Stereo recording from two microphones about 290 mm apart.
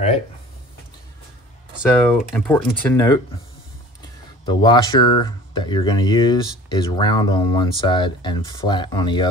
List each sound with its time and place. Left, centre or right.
2.0 s speech: centre
4.5 s speech: centre